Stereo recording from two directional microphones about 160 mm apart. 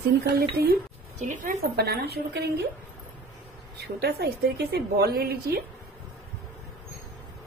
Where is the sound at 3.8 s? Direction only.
90° right; by 5.6 s 75° right (ahead or behind).